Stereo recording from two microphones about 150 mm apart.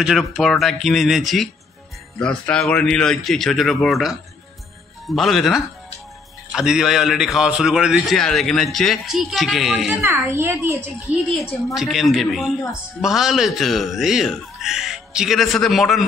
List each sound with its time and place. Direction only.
0.0 s a man's voice: centre (ahead or behind)
10.0 s a child's voice: 15° right (ahead or behind)
11.2 s a man's voice: centre (ahead or behind)